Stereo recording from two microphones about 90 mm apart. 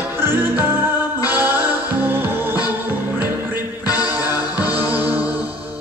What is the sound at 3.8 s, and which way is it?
Music, 45° left (ahead or behind).